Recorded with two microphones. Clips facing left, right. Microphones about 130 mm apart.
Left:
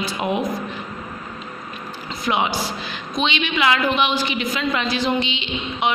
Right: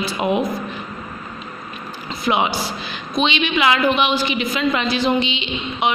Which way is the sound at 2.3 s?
20° right (ahead or behind).